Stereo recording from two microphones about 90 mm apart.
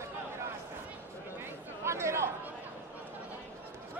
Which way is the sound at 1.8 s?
30° right (ahead or behind).